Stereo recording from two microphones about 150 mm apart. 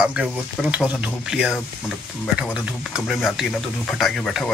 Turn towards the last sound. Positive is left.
turn(degrees=5)  # may be behind; listen again after turning